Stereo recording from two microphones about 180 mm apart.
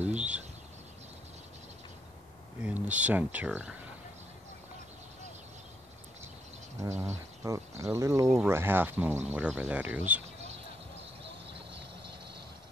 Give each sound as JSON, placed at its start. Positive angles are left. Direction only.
{"t": 0.0, "sound": "a sound", "side_deg": -5}
{"t": 2.6, "sound": "speech", "side_deg": -5}
{"t": 6.8, "sound": "speech", "side_deg": -15}